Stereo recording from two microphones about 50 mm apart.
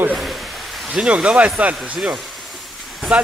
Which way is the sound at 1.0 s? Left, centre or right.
Centre.